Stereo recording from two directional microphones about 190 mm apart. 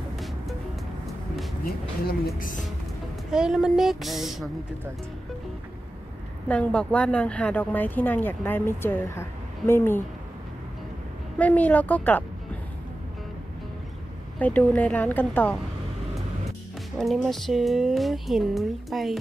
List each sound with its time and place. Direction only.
2.3 s speech: 45° left (ahead or behind)
3.3 s speech: 5° right (ahead or behind)
6.5 s a woman's voice: 5° left (ahead or behind)
11.3 s a woman's voice: 10° left (ahead or behind)
14.4 s a woman's voice: 5° left (ahead or behind)
17.0 s speech: centre (ahead or behind)